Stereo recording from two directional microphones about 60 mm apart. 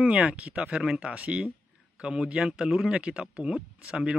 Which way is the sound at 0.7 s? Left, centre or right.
Centre.